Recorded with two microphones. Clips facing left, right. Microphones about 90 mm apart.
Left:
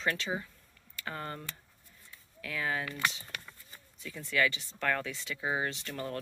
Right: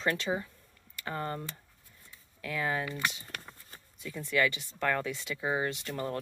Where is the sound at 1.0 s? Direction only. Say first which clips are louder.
Right 4 dB; 25° right (ahead or behind).